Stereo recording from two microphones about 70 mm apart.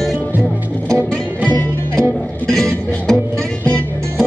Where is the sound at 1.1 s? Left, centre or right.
Centre.